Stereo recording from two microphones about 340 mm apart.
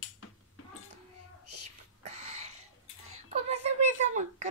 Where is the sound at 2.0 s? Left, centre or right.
Centre.